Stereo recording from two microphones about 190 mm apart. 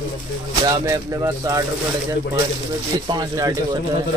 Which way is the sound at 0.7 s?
20° right (ahead or behind).